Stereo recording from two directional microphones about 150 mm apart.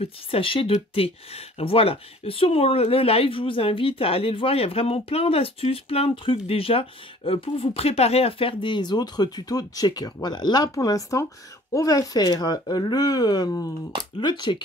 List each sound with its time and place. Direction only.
0.0 s speech: 35° left (ahead or behind)